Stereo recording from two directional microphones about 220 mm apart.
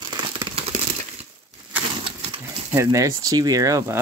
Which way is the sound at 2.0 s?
20° right (ahead or behind).